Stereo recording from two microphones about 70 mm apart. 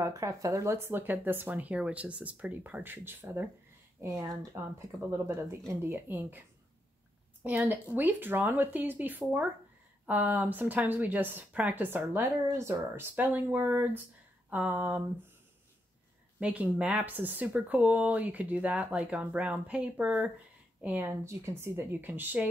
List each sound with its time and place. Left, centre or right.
0.0 s speech: right
4.0 s speech: right
4.6 s speech: right
7.4 s speech: right
12.4 s speech: right
13.1 s speech: right
16.3 s speech: centre